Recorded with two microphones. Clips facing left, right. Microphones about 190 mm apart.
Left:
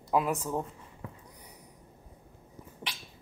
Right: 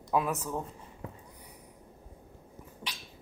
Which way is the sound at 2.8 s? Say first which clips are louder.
Left 1 dB; 20° left (ahead or behind).